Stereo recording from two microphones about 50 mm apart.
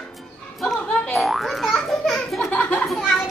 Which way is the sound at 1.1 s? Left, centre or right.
Centre.